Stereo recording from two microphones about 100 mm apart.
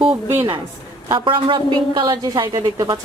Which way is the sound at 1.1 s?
55° right (ahead or behind).